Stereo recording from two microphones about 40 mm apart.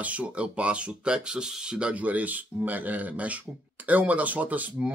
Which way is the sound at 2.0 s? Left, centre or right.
Right.